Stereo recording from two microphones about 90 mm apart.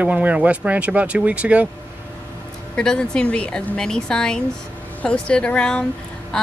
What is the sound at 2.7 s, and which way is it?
A woman's voice, 10° left (ahead or behind).